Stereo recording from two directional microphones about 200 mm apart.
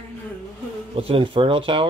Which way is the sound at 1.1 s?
25° right (ahead or behind).